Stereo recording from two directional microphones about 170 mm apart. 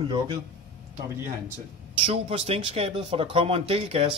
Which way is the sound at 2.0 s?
35° right (ahead or behind).